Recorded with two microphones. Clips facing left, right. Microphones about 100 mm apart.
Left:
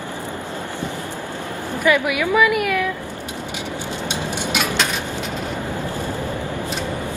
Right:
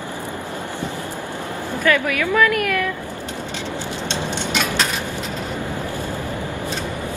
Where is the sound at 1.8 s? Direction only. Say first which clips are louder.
Left 1 dB; 10° left (ahead or behind).